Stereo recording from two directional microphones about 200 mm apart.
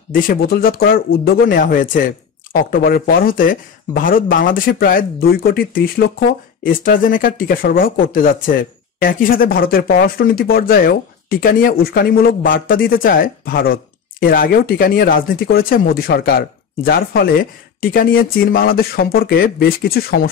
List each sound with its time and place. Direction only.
0.1 s speech: 45° left (ahead or behind)